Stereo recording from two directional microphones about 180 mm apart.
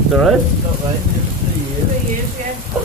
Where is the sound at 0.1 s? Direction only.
Centre (ahead or behind).